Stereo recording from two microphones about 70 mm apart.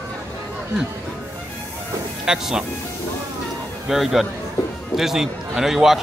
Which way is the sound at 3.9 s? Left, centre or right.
Centre.